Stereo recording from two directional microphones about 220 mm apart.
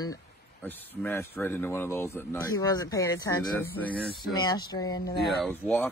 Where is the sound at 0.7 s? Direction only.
10° left (ahead or behind).